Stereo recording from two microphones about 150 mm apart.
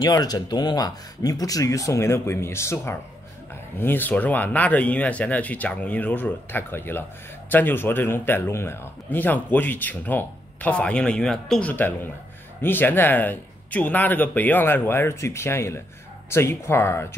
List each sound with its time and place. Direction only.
0.0 s a man's voice: 25° left (ahead or behind)